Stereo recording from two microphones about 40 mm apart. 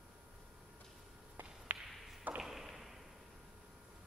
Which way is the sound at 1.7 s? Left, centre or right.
Right.